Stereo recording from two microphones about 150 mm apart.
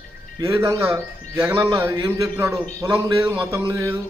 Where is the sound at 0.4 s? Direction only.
20° right (ahead or behind).